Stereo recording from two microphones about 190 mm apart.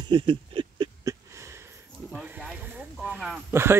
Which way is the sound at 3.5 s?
15° right (ahead or behind).